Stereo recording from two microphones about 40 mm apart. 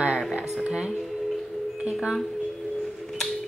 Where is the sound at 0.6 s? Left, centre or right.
Centre.